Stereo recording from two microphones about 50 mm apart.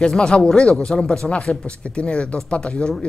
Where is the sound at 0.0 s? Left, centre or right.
Centre.